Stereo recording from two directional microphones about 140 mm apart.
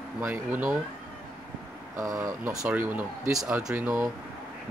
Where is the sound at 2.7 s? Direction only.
10° right (ahead or behind).